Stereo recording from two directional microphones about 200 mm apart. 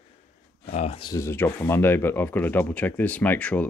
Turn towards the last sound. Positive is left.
turn(degrees=5)  # may be behind; listen again after turning